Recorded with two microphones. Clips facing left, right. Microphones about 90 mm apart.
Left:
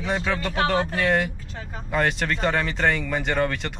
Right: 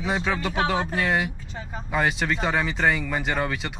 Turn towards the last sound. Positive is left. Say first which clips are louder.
# left 2 dB
turn(degrees=-5)  # may be behind; listen again after turning